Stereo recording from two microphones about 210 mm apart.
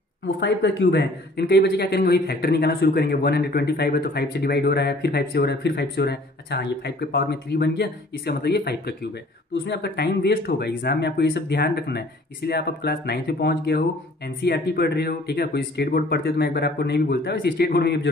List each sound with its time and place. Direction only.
0.4 s speech: 55° left (ahead or behind)